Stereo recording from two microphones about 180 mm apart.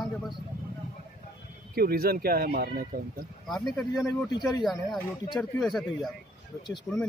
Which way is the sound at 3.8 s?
Centre (ahead or behind).